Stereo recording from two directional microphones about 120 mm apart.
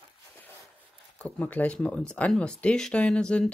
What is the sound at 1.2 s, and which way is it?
Speech, 10° left (ahead or behind).